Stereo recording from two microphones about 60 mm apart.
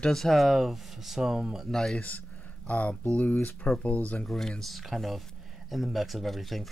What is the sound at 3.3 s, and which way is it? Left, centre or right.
Speech, centre.